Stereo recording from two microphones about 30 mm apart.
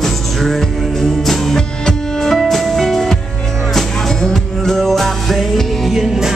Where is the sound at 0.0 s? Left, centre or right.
Centre.